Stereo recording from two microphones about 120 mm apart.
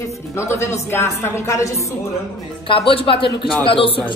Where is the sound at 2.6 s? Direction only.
45° left (ahead or behind).